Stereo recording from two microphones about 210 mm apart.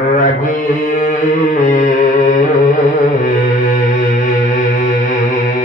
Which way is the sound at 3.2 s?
35° left (ahead or behind).